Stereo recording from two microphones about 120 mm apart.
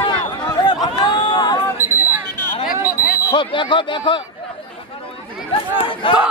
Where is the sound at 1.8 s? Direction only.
20° right (ahead or behind).